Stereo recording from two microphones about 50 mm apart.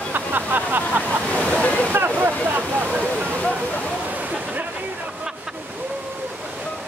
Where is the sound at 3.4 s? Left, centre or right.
Left.